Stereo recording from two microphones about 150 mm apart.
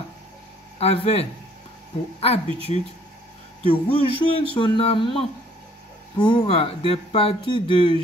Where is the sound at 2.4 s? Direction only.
35° right (ahead or behind).